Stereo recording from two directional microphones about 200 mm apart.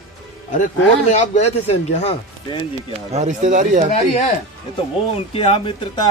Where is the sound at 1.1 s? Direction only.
35° left (ahead or behind).